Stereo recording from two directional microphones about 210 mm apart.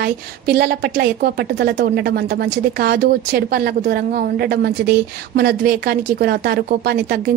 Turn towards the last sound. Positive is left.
turn(degrees=-45)  # may be behind; listen again after turning